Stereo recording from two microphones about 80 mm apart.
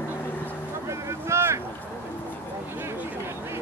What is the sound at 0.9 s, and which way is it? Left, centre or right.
Vehicle, right.